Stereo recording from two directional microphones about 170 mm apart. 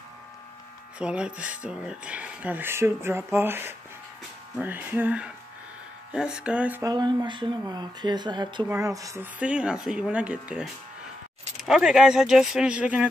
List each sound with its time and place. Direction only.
0.9 s speech: 5° right (ahead or behind)
6.8 s speech: 25° right (ahead or behind); by 13.1 s 5° right (ahead or behind)